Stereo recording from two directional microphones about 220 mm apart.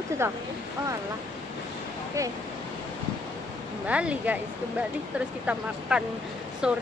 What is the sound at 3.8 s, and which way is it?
Speech, 5° right (ahead or behind).